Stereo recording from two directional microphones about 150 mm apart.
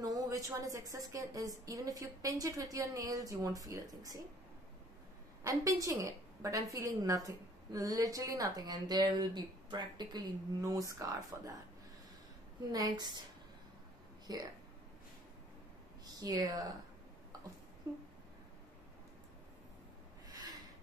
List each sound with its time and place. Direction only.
0.0 s a woman's voice: 25° right (ahead or behind)
5.4 s a woman's voice: 20° right (ahead or behind)
12.7 s a woman's voice: 30° right (ahead or behind)
14.2 s speech: 25° right (ahead or behind)
16.2 s a woman's voice: 25° right (ahead or behind)
17.9 s a woman's voice: 25° right (ahead or behind)